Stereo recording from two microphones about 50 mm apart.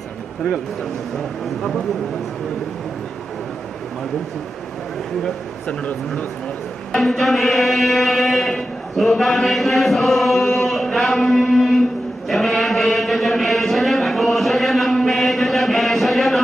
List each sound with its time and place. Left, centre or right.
5.7 s speech: left
7.0 s mantra: centre
12.3 s a sound: centre